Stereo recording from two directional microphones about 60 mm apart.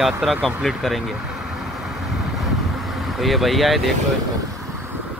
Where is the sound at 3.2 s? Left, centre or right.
Centre.